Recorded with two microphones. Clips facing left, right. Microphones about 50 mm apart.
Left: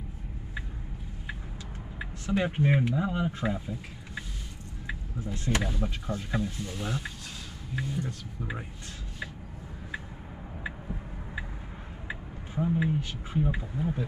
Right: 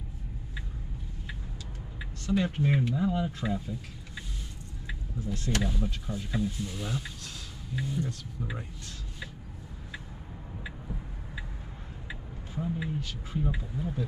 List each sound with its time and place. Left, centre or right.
2.0 s speech: centre
8.0 s speech: centre
12.1 s speech: left